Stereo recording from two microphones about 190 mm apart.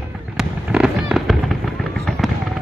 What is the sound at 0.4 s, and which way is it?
Fireworks, 5° right (ahead or behind).